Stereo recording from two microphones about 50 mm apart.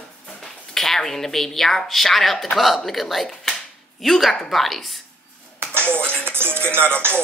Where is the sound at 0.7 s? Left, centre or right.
Centre.